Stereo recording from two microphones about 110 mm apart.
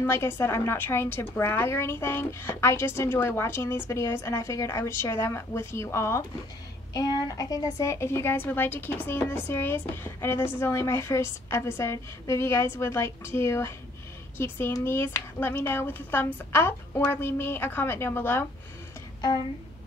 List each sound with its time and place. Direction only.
0.0 s a woman's voice: 25° left (ahead or behind)